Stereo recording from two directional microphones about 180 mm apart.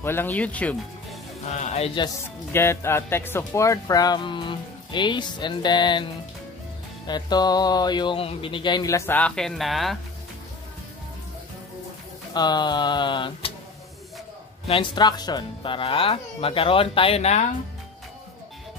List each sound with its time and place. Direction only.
0.0 s speech: 10° left (ahead or behind)
1.5 s speech: 40° left (ahead or behind)
2.5 s speech: 15° left (ahead or behind)
7.1 s speech: 25° left (ahead or behind); by 9.9 s centre (ahead or behind)
12.4 s speech: 25° left (ahead or behind)
14.7 s speech: 25° left (ahead or behind)